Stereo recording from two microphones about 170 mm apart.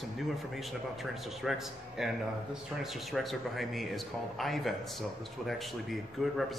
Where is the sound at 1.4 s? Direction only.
Centre (ahead or behind).